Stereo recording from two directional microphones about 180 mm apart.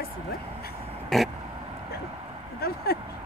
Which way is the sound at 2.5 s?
60° left (ahead or behind).